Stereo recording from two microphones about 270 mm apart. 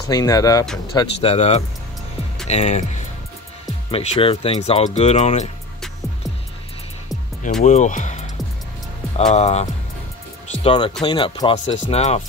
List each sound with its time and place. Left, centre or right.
0.1 s speech: centre
7.6 s speech: left